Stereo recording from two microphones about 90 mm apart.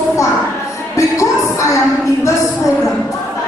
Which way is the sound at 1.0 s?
35° left (ahead or behind).